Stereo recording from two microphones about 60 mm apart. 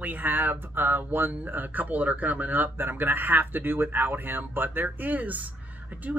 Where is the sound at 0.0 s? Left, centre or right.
Right.